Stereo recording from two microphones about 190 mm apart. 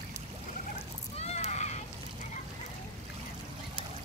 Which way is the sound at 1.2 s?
35° left (ahead or behind).